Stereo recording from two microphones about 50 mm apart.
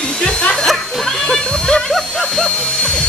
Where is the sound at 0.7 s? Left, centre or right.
Centre.